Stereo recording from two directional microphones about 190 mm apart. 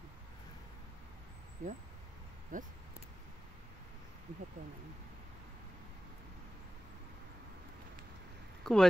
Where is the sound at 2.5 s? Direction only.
45° right (ahead or behind).